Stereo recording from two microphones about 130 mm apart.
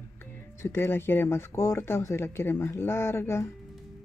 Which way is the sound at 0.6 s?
20° left (ahead or behind).